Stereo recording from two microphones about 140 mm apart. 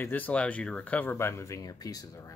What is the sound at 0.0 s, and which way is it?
Speech, 10° left (ahead or behind).